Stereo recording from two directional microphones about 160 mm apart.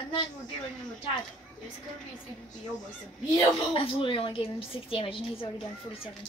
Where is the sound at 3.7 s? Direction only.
35° left (ahead or behind).